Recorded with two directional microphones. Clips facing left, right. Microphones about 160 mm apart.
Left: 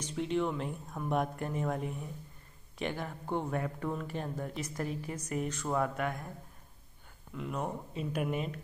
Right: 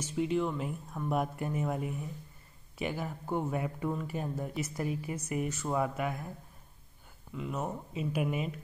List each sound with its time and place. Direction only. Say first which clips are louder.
0.0 s speech: right 1 dB; 5° right (ahead or behind)
7.3 s speech: even; centre (ahead or behind)